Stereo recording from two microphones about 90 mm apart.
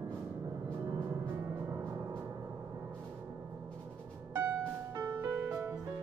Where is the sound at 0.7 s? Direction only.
25° right (ahead or behind).